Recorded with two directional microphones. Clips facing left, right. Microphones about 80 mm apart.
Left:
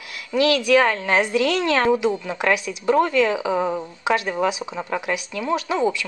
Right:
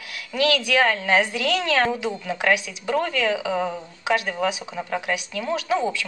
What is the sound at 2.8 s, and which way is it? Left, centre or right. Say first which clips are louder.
A woman's voice: left 5 dB; left.